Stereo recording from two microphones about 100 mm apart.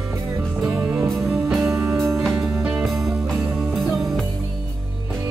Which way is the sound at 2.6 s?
10° right (ahead or behind).